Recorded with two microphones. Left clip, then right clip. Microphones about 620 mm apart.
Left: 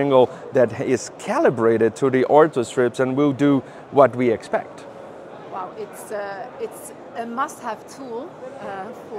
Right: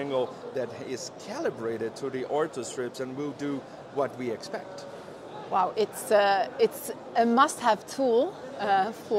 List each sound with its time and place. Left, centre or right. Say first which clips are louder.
0.0 s speech: left 13 dB; left
5.5 s speech: right 6 dB; right